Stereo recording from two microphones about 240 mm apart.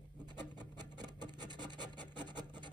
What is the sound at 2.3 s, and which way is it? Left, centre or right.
Filing, centre.